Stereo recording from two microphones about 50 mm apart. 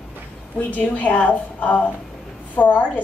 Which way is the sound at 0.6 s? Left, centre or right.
Left.